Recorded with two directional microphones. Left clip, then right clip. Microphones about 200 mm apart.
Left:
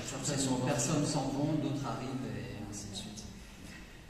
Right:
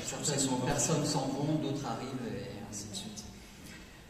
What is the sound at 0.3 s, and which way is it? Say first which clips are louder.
Speech: right 1 dB; 50° right (ahead or behind).